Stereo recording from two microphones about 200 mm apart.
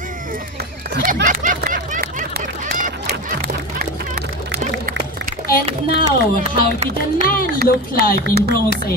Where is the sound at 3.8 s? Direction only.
50° right (ahead or behind).